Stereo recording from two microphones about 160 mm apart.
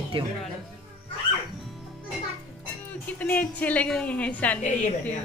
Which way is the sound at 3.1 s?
10° left (ahead or behind).